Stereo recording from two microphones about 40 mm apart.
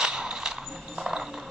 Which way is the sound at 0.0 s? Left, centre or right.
Centre.